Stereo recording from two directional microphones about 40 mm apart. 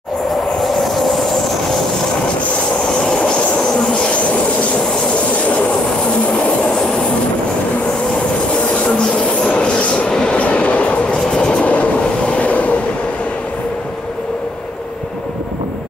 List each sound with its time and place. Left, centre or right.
0.6 s train: centre
3.0 s train: left
6.3 s train: left
9.2 s train: left
10.4 s train: left
11.3 s train: left
11.6 s train: left